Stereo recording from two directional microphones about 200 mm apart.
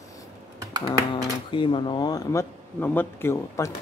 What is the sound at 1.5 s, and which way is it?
Speech, 25° left (ahead or behind).